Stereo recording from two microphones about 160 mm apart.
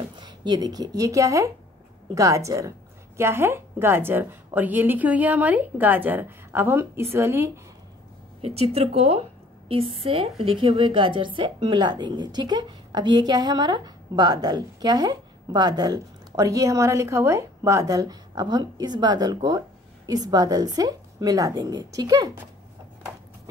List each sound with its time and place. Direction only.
0.2 s a woman's voice: 25° right (ahead or behind)
8.4 s a woman's voice: 40° right (ahead or behind); by 22.4 s 20° right (ahead or behind)